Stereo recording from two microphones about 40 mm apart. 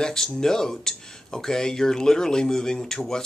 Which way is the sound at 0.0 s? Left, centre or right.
Centre.